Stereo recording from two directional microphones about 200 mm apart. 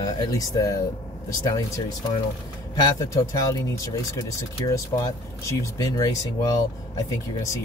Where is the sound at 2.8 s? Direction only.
20° left (ahead or behind).